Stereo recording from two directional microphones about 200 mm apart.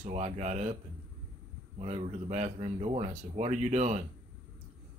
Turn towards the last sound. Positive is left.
turn(degrees=-35)  # may be behind; listen again after turning